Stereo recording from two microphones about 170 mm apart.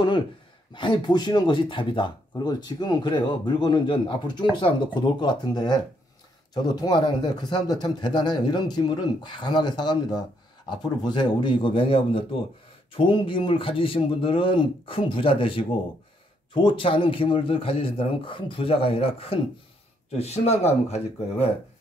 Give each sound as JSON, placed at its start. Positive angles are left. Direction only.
{"t": 0.7, "sound": "a man's voice", "side_deg": 25}